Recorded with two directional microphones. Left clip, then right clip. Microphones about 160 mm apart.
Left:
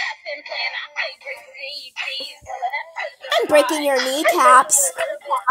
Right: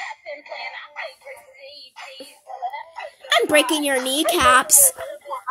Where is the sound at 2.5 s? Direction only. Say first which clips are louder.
Left 4 dB; 35° left (ahead or behind).